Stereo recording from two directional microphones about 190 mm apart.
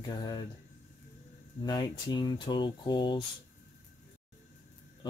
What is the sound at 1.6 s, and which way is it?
Speech, 25° left (ahead or behind).